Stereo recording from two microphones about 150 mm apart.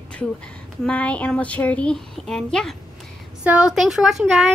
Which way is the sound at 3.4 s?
5° right (ahead or behind).